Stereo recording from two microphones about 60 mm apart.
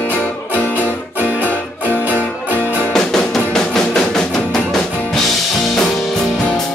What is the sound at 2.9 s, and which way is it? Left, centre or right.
Music, centre.